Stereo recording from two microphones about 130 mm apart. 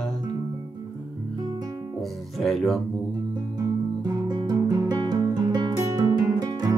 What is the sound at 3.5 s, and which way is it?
Guitar, 30° right (ahead or behind).